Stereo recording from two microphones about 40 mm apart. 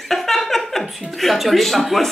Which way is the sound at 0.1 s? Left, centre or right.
Centre.